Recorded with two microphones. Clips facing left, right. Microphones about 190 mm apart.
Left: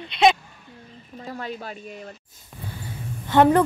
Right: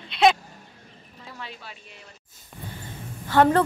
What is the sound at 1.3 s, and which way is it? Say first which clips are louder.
Speech: left 8 dB; 45° left (ahead or behind).